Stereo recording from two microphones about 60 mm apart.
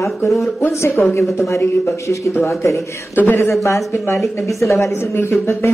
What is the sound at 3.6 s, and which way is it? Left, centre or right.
Speech, left.